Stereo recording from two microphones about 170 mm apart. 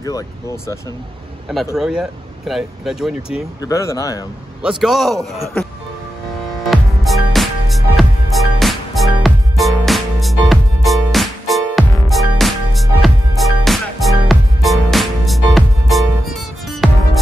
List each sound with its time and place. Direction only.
1.8 s speech: 5° right (ahead or behind)
3.6 s speech: 20° left (ahead or behind)
4.6 s speech: 5° right (ahead or behind)
6.6 s music: centre (ahead or behind)